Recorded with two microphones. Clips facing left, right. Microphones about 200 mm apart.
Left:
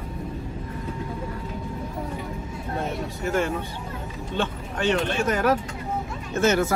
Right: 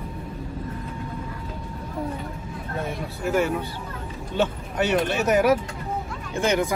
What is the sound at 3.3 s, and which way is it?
Speech, 10° right (ahead or behind).